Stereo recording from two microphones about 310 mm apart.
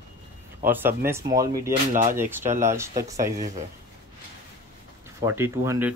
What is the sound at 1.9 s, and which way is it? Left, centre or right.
Speech, right.